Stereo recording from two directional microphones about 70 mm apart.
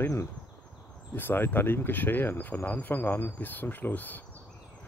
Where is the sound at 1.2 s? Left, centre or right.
Left.